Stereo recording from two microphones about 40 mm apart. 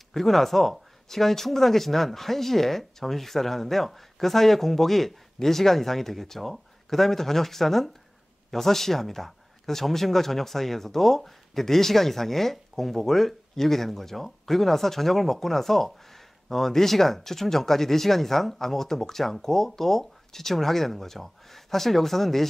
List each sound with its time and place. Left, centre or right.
0.1 s speech: centre